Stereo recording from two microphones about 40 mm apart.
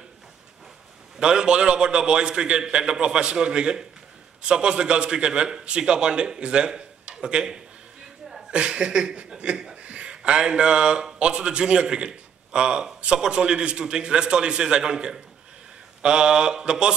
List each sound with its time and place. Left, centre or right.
1.2 s a man's voice: centre
9.8 s a man's voice: right